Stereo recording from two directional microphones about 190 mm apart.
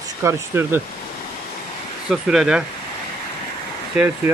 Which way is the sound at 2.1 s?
5° right (ahead or behind).